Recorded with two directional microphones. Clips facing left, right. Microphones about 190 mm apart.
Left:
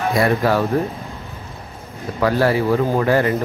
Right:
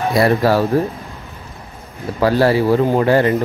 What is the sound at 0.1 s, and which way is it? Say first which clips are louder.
Speech: right 3 dB; 35° right (ahead or behind).